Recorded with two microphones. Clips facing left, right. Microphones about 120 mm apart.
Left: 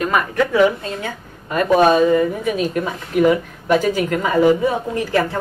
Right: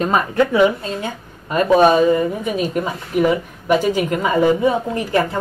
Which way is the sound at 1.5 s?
25° right (ahead or behind).